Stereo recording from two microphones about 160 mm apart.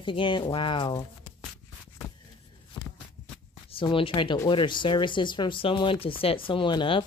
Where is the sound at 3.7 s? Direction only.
35° left (ahead or behind).